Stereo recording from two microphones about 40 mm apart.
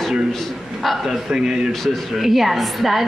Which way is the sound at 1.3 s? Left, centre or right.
Centre.